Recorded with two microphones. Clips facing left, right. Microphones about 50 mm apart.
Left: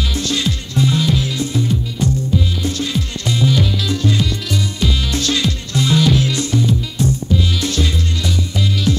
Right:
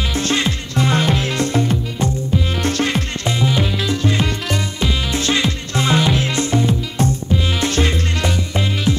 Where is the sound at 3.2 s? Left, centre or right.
Right.